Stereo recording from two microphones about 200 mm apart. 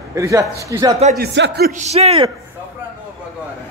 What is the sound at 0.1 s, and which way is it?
Speech, 15° right (ahead or behind).